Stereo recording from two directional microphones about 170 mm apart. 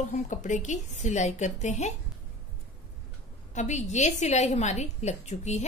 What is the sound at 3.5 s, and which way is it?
A woman's voice, 45° left (ahead or behind).